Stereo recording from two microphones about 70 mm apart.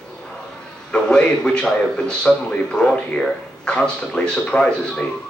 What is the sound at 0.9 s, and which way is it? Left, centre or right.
A man's voice, centre.